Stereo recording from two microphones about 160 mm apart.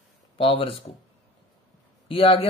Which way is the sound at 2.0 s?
35° left (ahead or behind).